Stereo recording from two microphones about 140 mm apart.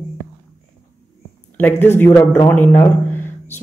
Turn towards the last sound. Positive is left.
turn(degrees=15)  # may be behind; listen again after turning